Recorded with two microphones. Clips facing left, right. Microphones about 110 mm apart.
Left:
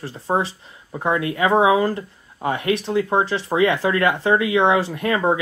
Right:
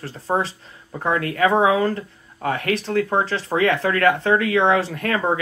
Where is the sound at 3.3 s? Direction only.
25° left (ahead or behind).